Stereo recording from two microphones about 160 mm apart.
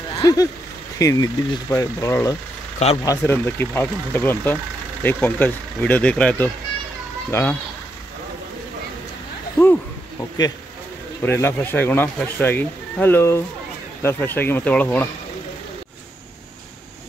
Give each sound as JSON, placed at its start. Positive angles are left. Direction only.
{"t": 0.2, "sound": "speech", "side_deg": 20}
{"t": 11.2, "sound": "speech", "side_deg": 15}